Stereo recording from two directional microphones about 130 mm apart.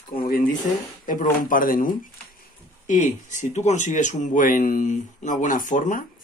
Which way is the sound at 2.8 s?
65° left (ahead or behind).